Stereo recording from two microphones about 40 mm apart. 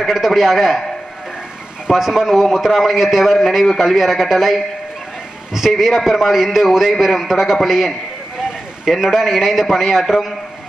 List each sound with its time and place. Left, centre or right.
0.1 s a man's voice: centre
1.9 s a man's voice: centre
8.4 s a sound: centre
8.9 s a man's voice: centre